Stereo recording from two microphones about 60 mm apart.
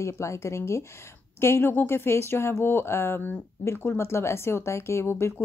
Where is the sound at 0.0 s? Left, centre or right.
Left.